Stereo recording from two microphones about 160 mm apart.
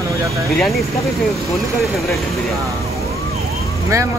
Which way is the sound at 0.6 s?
Centre (ahead or behind).